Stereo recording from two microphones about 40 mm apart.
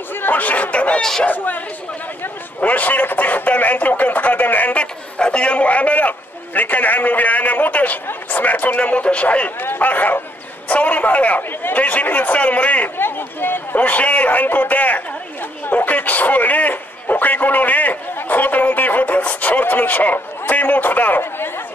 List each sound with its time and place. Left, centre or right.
0.1 s chatter: left
0.4 s a sound: left
1.2 s a man's voice: left
2.6 s a man's voice: left
4.7 s a man's voice: left
9.6 s a man's voice: left
12.9 s a man's voice: left